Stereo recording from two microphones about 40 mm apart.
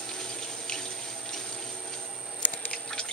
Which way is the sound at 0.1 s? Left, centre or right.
Centre.